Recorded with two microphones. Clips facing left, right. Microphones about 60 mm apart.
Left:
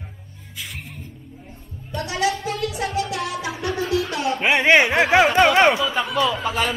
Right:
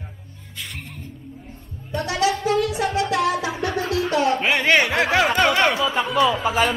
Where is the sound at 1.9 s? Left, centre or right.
Right.